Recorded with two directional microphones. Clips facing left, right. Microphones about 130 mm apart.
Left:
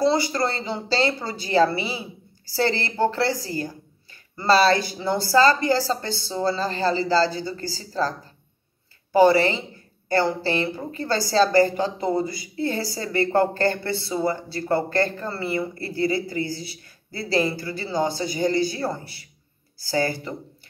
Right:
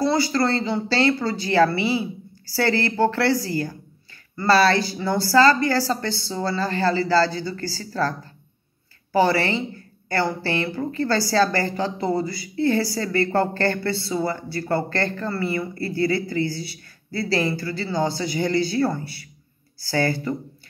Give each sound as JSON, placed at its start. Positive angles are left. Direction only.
{"t": 0.0, "sound": "a woman's voice", "side_deg": 20}
{"t": 9.1, "sound": "a woman's voice", "side_deg": 20}